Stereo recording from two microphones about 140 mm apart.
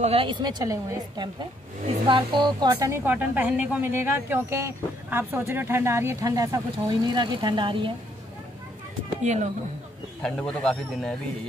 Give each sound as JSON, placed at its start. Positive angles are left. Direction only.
{"t": 0.0, "sound": "speech", "side_deg": -40}
{"t": 2.7, "sound": "speech", "side_deg": -20}
{"t": 9.2, "sound": "a woman's voice", "side_deg": -55}
{"t": 10.2, "sound": "speech", "side_deg": 5}